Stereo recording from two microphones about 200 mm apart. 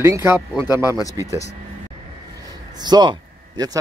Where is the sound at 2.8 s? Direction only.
20° right (ahead or behind).